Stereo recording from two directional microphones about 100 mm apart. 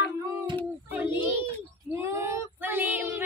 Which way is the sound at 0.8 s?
20° right (ahead or behind).